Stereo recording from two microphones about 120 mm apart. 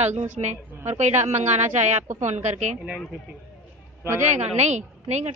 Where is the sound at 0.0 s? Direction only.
70° right (ahead or behind).